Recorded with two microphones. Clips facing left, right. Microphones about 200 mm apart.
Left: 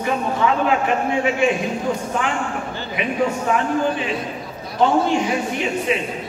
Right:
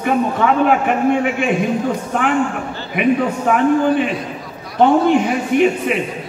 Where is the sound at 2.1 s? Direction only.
55° right (ahead or behind).